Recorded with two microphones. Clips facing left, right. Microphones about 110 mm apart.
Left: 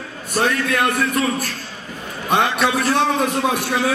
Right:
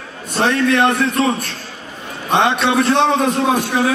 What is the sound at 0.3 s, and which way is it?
Speech, 25° right (ahead or behind).